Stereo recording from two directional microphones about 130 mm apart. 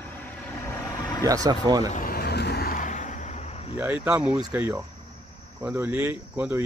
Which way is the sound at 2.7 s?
75° left (ahead or behind).